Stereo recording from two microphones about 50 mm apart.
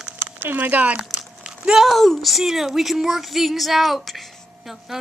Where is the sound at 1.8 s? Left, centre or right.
Centre.